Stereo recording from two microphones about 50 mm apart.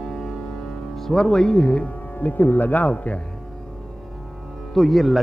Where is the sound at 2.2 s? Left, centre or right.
Left.